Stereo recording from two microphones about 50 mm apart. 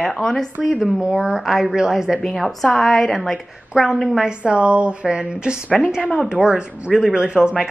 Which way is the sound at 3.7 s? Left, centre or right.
Centre.